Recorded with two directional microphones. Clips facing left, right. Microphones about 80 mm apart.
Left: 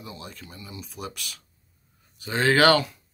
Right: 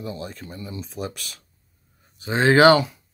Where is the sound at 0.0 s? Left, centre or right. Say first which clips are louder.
Right 8 dB; right.